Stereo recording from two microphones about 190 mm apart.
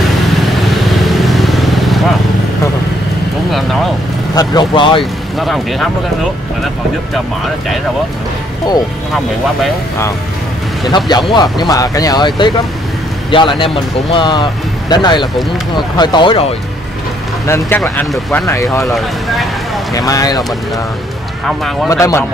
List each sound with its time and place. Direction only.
0.6 s vehicle: centre (ahead or behind)
4.4 s speech: 25° left (ahead or behind)
5.4 s speech: centre (ahead or behind)
11.1 s speech: 20° left (ahead or behind)
17.5 s speech: 10° left (ahead or behind)
18.9 s speech: centre (ahead or behind)
19.9 s speech: 20° left (ahead or behind)
21.8 s speech: 15° left (ahead or behind)